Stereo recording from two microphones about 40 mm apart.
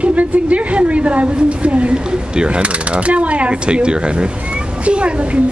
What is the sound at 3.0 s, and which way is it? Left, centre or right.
A woman's voice, right.